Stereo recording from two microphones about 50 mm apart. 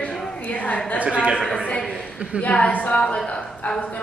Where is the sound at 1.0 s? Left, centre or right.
Right.